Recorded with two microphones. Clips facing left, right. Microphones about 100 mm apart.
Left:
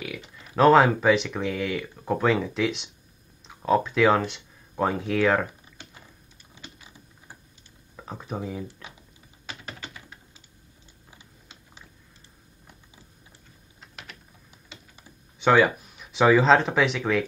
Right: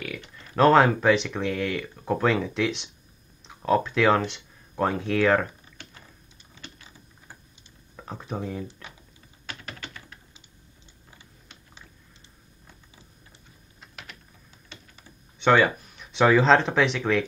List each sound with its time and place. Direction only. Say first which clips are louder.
0.0 s speech: even; 5° left (ahead or behind)
6.5 s a sound: even; 15° left (ahead or behind)
7.9 s speech: even; 5° left (ahead or behind)
9.5 s typing: even; 15° left (ahead or behind)
13.7 s typing: even; centre (ahead or behind)
15.3 s speech: left 1 dB; 5° left (ahead or behind)